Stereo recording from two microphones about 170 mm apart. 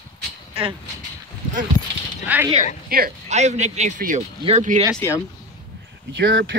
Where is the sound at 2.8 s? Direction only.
60° right (ahead or behind).